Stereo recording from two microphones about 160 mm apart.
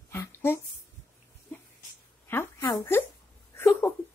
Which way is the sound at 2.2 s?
15° left (ahead or behind).